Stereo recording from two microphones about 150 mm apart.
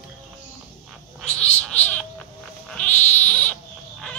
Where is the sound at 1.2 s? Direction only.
10° left (ahead or behind).